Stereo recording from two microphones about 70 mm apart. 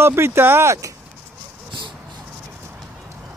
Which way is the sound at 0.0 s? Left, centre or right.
Right.